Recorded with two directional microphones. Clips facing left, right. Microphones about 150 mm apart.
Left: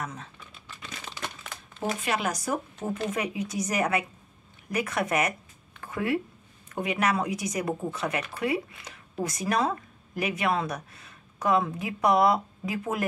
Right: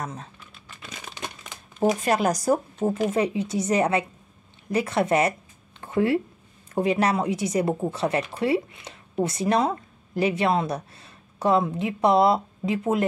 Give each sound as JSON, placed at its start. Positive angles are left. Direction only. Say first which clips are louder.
{"t": 0.0, "sound": "speech", "louder": "right 3 dB", "side_deg": -35}
{"t": 2.0, "sound": "speech", "louder": "right 7 dB", "side_deg": -40}